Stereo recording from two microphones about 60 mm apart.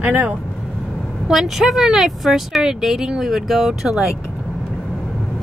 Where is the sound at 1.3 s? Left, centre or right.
Centre.